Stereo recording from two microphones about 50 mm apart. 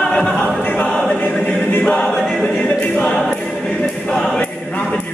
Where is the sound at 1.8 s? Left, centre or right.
Centre.